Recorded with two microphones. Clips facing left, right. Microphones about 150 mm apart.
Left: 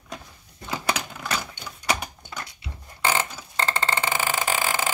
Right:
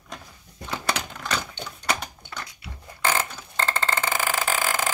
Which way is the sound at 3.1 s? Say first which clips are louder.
Left 1 dB; 10° left (ahead or behind).